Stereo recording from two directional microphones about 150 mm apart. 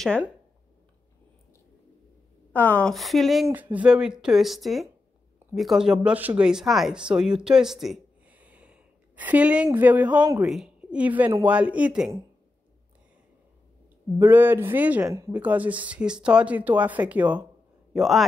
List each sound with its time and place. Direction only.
2.5 s speech: 10° left (ahead or behind)
3.4 s speech: 10° right (ahead or behind)
10.1 s speech: 25° right (ahead or behind)
10.4 s speech: centre (ahead or behind)
14.1 s speech: 15° right (ahead or behind)